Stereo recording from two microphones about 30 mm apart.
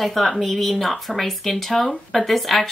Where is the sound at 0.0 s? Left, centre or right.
Centre.